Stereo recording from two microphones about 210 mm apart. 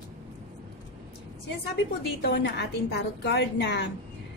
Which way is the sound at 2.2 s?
55° left (ahead or behind).